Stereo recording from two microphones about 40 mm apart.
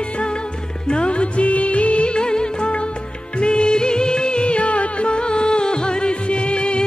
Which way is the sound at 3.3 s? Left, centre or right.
Left.